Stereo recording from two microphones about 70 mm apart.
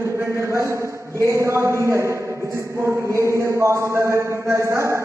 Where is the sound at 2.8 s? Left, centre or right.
Right.